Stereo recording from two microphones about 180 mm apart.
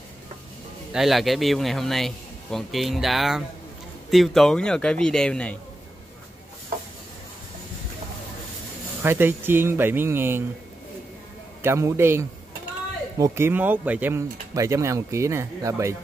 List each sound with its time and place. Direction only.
0.9 s a man's voice: centre (ahead or behind)
9.0 s speech: 10° right (ahead or behind)
11.6 s speech: 15° right (ahead or behind)